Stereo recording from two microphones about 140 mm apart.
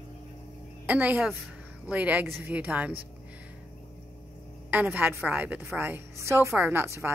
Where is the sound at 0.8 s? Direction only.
10° right (ahead or behind).